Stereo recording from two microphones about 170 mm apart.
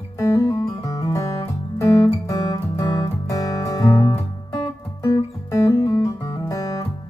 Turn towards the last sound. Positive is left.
turn(degrees=20)  # may be behind; listen again after turning